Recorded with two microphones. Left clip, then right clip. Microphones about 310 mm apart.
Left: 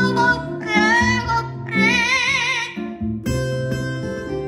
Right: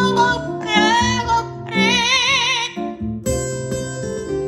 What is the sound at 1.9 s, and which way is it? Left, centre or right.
Music, right.